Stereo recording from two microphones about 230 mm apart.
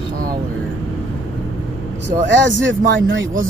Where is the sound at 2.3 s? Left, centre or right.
Right.